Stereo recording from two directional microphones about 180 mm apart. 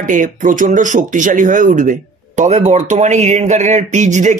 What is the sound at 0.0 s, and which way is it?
Speech, 45° right (ahead or behind).